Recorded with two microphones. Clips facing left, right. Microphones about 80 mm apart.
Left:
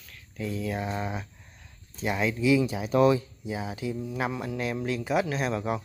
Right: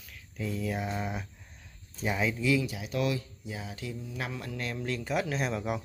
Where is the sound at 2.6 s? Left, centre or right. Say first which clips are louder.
Left 9 dB; left; by 5.8 s centre.